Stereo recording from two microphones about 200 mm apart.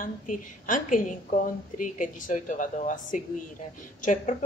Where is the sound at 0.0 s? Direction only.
40° left (ahead or behind).